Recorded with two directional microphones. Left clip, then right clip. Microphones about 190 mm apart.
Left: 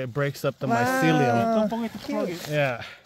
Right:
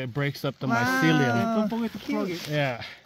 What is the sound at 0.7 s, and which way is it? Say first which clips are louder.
Speech: left 1 dB; 45° left (ahead or behind).